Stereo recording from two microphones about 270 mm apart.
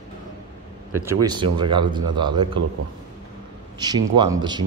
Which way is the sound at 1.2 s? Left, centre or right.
Centre.